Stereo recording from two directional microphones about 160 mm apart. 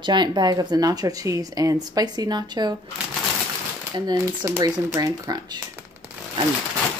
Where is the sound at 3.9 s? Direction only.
25° right (ahead or behind).